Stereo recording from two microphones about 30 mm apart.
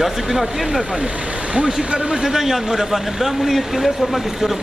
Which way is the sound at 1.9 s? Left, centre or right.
Right.